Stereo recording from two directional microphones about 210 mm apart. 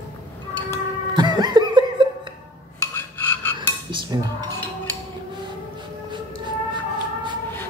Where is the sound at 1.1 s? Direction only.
20° right (ahead or behind).